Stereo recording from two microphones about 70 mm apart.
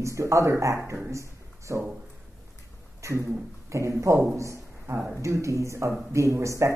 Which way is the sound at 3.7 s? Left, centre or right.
Right.